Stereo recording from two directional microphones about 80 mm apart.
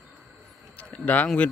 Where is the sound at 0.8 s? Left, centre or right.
Centre.